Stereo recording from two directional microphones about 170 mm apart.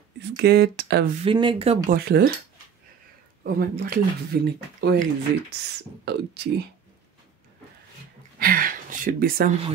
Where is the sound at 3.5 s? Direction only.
60° right (ahead or behind).